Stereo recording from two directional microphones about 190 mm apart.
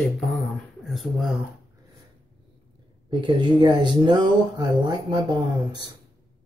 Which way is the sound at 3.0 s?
25° right (ahead or behind).